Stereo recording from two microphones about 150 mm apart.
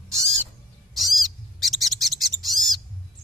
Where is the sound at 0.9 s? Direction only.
Centre (ahead or behind).